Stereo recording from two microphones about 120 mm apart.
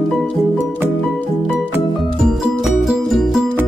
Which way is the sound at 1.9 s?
Centre (ahead or behind).